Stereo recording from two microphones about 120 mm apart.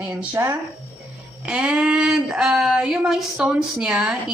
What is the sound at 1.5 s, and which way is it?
A woman's voice, 10° right (ahead or behind).